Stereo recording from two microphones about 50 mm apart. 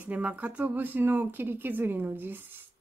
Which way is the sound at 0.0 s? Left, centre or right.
Right.